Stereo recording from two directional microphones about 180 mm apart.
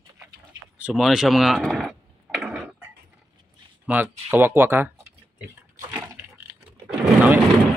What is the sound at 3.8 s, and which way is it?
Speech, 10° right (ahead or behind).